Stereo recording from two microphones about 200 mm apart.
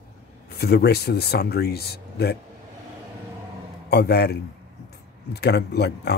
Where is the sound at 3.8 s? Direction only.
55° left (ahead or behind).